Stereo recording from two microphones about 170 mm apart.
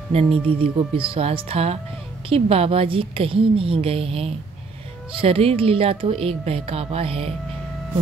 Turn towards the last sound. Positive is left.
turn(degrees=-35)  # may be behind; listen again after turning